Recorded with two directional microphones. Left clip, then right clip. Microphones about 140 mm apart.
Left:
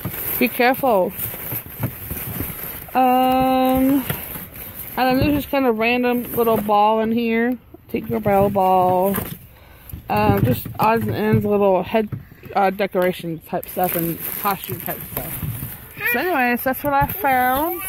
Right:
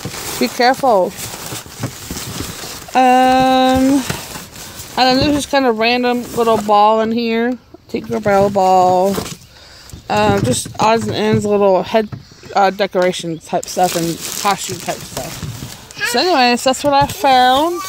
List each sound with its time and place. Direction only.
0.6 s speech: 5° right (ahead or behind)
2.9 s speech: 20° right (ahead or behind)
16.5 s speech: 35° right (ahead or behind)